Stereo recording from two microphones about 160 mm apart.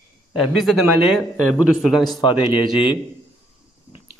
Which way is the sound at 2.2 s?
30° left (ahead or behind).